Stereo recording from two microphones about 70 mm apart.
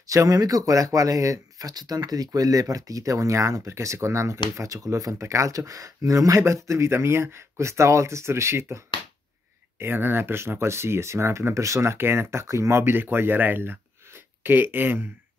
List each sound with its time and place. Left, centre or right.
0.0 s speech: right